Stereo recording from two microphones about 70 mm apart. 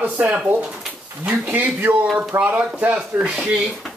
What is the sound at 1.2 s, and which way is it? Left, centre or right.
Speech, right.